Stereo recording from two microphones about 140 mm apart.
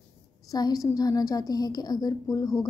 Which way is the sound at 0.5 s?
25° left (ahead or behind).